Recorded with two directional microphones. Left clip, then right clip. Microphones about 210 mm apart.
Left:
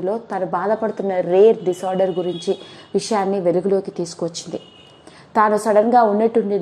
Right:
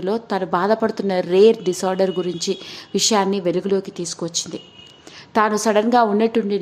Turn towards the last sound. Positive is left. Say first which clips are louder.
# left 2 dB
turn(degrees=-10)  # may be behind; listen again after turning